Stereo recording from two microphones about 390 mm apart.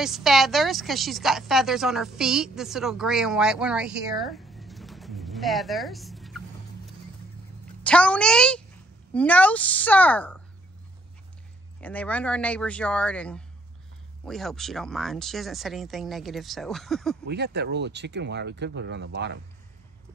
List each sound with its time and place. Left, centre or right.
0.0 s speech: centre
7.8 s speech: centre
11.8 s speech: centre
17.3 s speech: right